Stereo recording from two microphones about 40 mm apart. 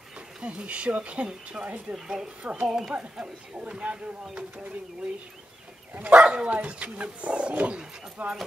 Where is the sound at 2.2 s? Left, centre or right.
Right.